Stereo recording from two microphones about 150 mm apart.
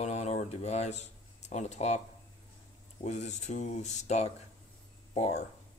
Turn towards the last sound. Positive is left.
turn(degrees=45)  # may be behind; listen again after turning